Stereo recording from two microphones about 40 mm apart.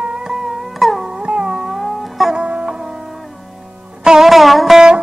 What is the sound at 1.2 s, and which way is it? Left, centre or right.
Cat, right.